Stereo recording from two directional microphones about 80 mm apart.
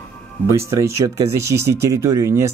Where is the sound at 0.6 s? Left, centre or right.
Right.